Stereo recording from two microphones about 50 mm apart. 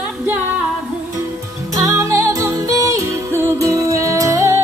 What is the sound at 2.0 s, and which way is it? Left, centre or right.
Music, right.